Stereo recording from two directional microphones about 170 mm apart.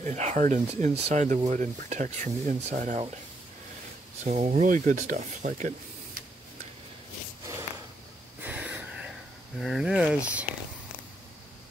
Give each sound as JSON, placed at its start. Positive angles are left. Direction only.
{"t": 0.0, "sound": "speech", "side_deg": -45}
{"t": 4.2, "sound": "speech", "side_deg": -40}
{"t": 8.4, "sound": "a sound", "side_deg": -10}
{"t": 9.6, "sound": "speech", "side_deg": 0}